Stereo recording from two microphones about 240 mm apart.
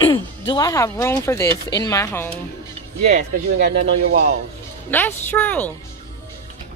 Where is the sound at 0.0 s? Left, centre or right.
Centre.